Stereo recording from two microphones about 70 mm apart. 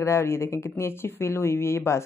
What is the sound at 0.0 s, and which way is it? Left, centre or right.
Speech, left.